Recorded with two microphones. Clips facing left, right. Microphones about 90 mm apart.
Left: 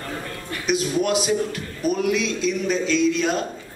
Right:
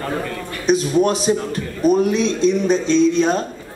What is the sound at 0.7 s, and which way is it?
A man's voice, 35° right (ahead or behind).